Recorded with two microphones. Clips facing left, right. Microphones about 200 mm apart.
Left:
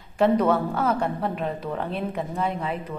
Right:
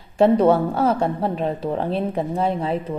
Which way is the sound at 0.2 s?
30° right (ahead or behind).